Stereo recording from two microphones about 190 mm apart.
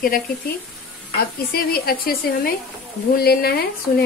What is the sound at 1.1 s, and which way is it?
Speech, 55° left (ahead or behind).